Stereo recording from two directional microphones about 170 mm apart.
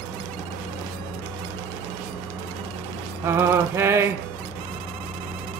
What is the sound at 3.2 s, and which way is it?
Mantra, 15° right (ahead or behind).